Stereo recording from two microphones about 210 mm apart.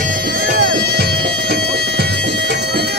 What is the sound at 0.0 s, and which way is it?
Bagpipes, 40° right (ahead or behind).